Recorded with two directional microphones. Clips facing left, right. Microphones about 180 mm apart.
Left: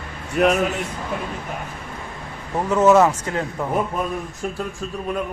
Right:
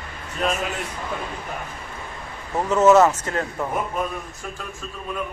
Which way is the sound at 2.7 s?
10° left (ahead or behind).